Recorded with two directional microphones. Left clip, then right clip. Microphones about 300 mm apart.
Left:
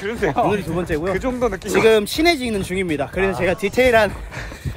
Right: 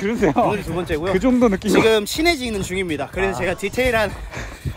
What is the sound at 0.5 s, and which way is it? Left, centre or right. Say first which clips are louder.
Speech: left 1 dB; centre.